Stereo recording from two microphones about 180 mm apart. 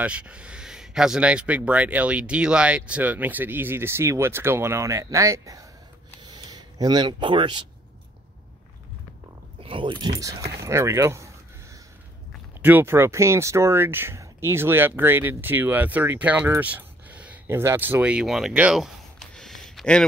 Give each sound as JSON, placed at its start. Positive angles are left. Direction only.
{"t": 0.0, "sound": "speech", "side_deg": -5}
{"t": 6.2, "sound": "a sound", "side_deg": -25}
{"t": 9.6, "sound": "speech", "side_deg": -30}
{"t": 12.6, "sound": "speech", "side_deg": -10}